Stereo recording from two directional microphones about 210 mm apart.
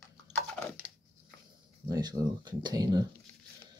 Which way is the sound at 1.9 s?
20° right (ahead or behind).